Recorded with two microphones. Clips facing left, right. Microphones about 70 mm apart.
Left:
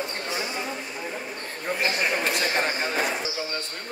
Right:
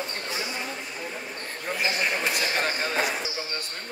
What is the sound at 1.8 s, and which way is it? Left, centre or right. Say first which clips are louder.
Speech: left 1 dB; centre.